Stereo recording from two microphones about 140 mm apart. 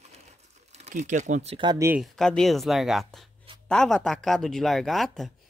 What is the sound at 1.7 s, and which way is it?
Speech, 20° right (ahead or behind).